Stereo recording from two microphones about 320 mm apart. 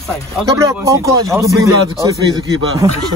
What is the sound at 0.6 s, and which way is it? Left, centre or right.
A man's voice, centre.